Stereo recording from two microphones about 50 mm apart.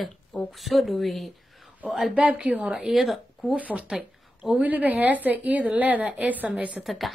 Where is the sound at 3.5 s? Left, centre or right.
Right.